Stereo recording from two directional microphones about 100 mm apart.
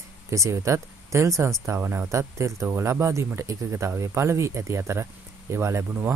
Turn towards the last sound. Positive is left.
turn(degrees=-30)  # may be behind; listen again after turning